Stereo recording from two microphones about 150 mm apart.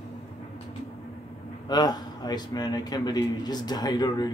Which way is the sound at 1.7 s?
25° left (ahead or behind).